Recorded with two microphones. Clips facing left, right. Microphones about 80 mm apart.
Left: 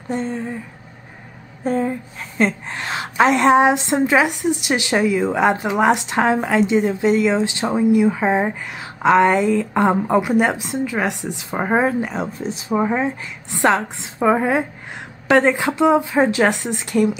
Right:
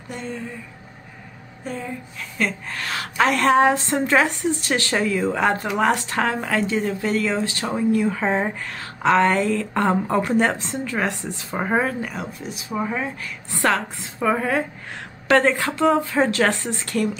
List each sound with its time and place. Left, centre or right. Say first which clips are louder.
0.1 s speech: left 8 dB; left
1.6 s a woman's voice: left 10 dB; left; by 17.2 s centre